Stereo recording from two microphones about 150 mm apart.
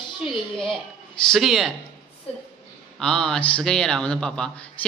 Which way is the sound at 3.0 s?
5° left (ahead or behind).